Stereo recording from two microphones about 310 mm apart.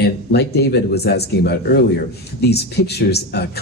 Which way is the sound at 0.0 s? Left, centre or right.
Left.